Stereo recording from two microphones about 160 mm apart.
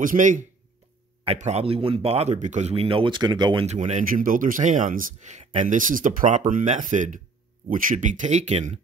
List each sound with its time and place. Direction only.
0.0 s speech: 55° right (ahead or behind)
1.2 s speech: 40° right (ahead or behind)
3.6 s speech: 45° right (ahead or behind)